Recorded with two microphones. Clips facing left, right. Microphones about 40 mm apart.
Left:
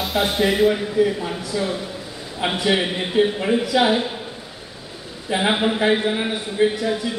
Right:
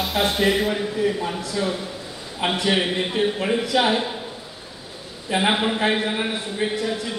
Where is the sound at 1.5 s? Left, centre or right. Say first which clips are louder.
Left 1 dB; centre.